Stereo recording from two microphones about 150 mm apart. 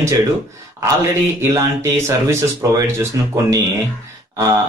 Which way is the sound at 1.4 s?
20° right (ahead or behind).